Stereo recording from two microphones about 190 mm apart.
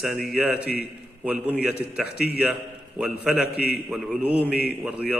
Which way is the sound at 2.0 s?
55° left (ahead or behind).